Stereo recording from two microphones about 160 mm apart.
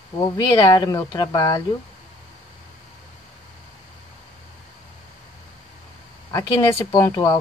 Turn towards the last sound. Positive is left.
turn(degrees=25)  # may be behind; listen again after turning